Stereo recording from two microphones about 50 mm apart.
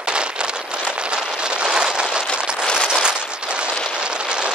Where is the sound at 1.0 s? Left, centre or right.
Centre.